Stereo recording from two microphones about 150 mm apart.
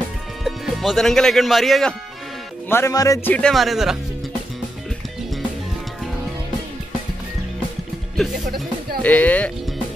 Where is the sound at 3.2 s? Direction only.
5° left (ahead or behind).